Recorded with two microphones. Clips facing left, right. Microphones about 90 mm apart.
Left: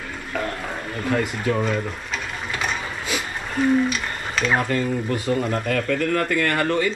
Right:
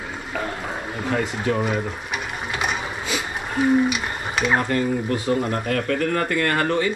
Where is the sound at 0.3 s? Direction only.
15° right (ahead or behind).